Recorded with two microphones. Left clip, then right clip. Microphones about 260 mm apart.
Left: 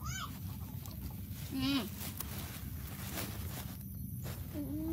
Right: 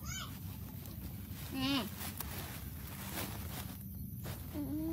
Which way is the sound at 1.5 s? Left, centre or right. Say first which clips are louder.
Even; centre.